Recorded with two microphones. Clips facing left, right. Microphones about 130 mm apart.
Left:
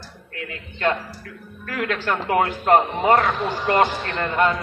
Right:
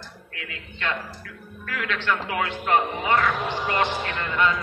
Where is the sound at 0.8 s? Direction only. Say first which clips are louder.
Left 7 dB; 45° left (ahead or behind).